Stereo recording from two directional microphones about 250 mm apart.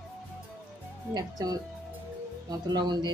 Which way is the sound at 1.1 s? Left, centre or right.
Centre.